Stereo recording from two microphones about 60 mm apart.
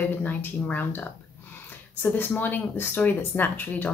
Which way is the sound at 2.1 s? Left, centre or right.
Left.